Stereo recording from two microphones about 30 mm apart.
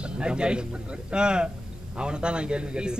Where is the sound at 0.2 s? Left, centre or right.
Right.